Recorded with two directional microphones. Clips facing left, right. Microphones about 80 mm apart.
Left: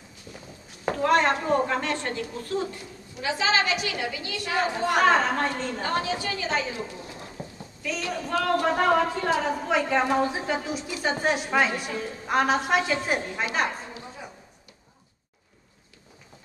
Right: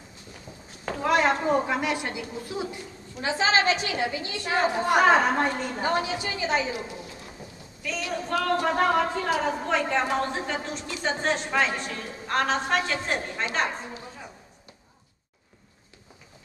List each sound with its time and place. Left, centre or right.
0.9 s speech: centre
3.2 s a woman's voice: right; by 6.8 s centre
8.1 s a woman's voice: centre